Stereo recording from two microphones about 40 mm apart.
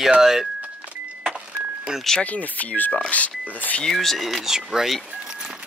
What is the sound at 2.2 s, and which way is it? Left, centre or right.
Speech, left.